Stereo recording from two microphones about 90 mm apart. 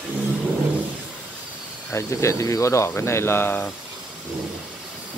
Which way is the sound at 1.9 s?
35° left (ahead or behind).